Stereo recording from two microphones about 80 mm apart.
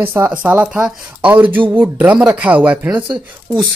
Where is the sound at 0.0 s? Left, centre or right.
Right.